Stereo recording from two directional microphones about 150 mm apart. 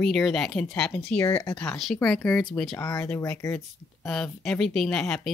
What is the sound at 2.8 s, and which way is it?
Speech, 20° left (ahead or behind).